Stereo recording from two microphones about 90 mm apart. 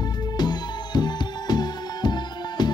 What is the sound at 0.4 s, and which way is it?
Music, 50° left (ahead or behind).